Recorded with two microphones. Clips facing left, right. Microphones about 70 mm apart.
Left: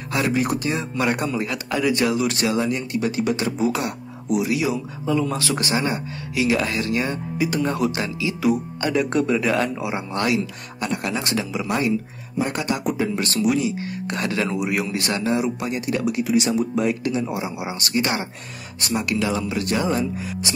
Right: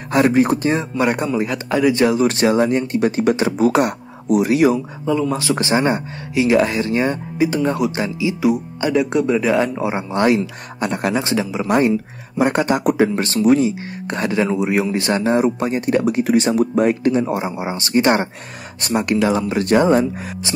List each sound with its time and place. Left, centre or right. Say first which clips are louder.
0.1 s speech: right 7 dB; right
5.0 s speech: right 2 dB; centre
5.3 s speech: right 5 dB; right
9.8 s speech: right 5 dB; right
11.1 s speech: right 5 dB; right
12.4 s speech: right 9 dB; right
15.2 s speech: right 5 dB; right